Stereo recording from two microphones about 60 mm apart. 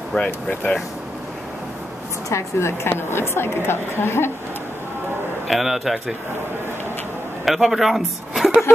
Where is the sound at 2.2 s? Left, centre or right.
Left.